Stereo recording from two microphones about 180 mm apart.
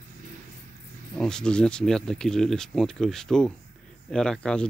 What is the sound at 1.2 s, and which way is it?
Speech, 5° left (ahead or behind).